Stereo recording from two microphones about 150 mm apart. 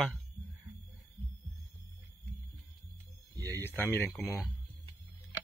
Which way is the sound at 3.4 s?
20° right (ahead or behind).